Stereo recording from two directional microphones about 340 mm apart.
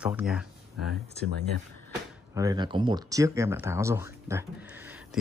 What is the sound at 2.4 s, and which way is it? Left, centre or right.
Speech, centre.